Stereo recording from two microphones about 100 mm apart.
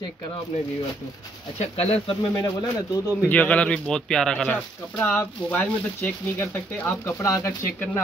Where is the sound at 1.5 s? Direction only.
80° left.